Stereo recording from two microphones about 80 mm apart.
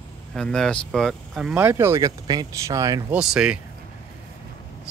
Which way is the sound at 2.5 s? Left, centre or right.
Right.